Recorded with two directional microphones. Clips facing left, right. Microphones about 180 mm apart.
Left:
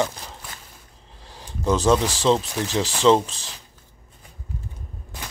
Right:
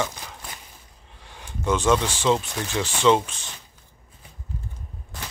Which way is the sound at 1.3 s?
35° left (ahead or behind).